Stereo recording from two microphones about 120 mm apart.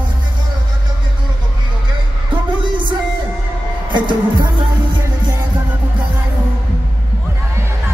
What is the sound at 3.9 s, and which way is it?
Music, 40° right (ahead or behind).